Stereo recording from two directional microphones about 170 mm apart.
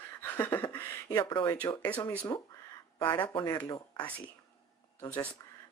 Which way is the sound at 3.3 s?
20° left (ahead or behind).